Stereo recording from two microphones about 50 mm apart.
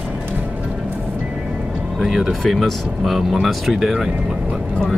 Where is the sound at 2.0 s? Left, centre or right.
Centre.